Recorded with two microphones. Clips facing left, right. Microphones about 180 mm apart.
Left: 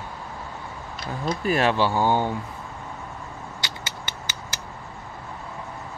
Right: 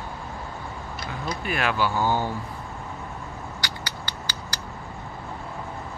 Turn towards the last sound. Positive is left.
turn(degrees=20)  # may be behind; listen again after turning